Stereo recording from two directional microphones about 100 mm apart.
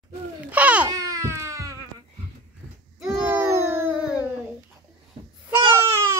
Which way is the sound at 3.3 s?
25° right (ahead or behind).